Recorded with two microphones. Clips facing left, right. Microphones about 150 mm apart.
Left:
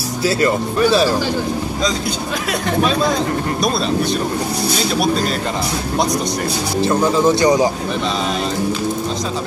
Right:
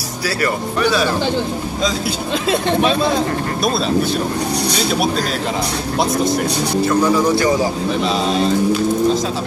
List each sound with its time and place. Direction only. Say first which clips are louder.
0.2 s speech: left 4 dB; 25° left (ahead or behind)
6.9 s speech: left 1 dB; 25° left (ahead or behind)